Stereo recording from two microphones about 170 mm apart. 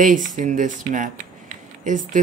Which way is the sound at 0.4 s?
45° right (ahead or behind).